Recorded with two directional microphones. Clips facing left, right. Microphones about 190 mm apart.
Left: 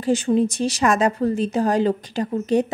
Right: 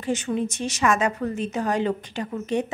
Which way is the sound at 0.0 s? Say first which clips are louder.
Left 7 dB; 35° left (ahead or behind).